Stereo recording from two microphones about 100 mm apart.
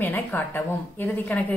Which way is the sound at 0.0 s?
20° left (ahead or behind).